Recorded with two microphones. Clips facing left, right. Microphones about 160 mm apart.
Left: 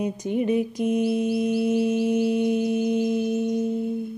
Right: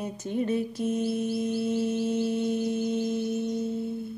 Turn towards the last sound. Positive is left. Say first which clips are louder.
# left 5 dB
turn(degrees=15)  # may be behind; listen again after turning